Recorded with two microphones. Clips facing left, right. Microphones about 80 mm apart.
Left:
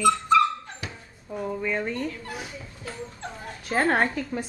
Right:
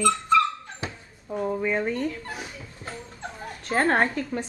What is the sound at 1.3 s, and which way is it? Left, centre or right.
Speech, centre.